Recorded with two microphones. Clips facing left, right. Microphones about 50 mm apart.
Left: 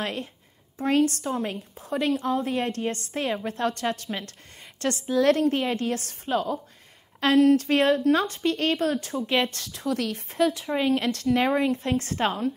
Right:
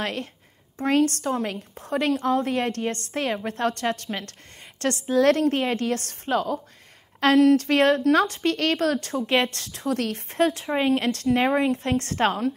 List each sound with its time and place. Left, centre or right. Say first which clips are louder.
0.0 s a woman's voice: right 2 dB; right
4.1 s a woman's voice: right 1 dB; centre
4.7 s a woman's voice: right 2 dB; right
9.1 s speech: right 2 dB; right
9.5 s a woman's voice: right 1 dB; right
10.7 s speech: right 2 dB; right
11.7 s a woman's voice: right 1 dB; right